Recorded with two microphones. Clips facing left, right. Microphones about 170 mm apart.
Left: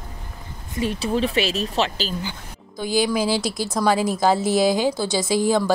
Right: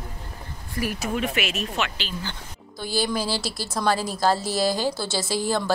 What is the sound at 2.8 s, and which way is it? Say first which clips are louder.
A woman's voice: left 5 dB; 15° left (ahead or behind).